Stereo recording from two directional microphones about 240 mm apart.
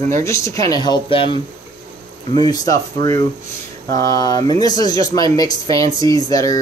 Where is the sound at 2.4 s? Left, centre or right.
Centre.